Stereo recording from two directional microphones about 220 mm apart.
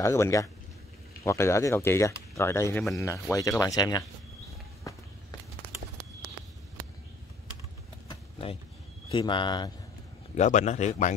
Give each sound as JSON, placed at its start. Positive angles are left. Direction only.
{"t": 0.0, "sound": "speech", "side_deg": 15}
{"t": 4.9, "sound": "walk", "side_deg": 15}
{"t": 8.1, "sound": "vehicle", "side_deg": 25}
{"t": 9.1, "sound": "speech", "side_deg": 20}
{"t": 10.3, "sound": "speech", "side_deg": 30}